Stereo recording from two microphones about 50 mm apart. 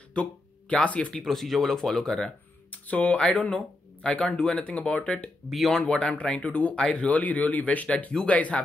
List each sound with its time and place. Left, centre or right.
0.1 s speech: left
1.1 s speech: centre
2.9 s speech: left
5.5 s speech: centre
5.8 s speech: centre
6.7 s speech: centre
7.1 s speech: left